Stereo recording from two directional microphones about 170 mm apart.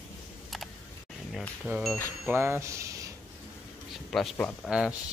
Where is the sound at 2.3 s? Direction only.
15° right (ahead or behind).